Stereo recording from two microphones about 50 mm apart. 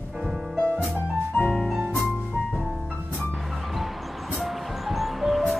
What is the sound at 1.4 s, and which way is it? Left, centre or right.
Music, left.